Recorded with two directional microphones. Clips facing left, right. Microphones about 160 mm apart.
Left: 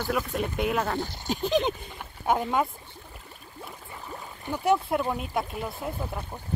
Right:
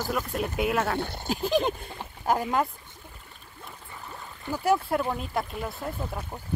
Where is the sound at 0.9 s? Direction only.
60° right (ahead or behind).